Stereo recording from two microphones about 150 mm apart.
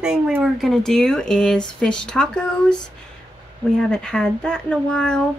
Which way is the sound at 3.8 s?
5° left (ahead or behind).